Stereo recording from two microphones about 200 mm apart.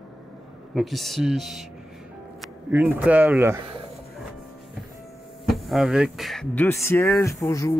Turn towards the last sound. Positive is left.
turn(degrees=15)  # may be behind; listen again after turning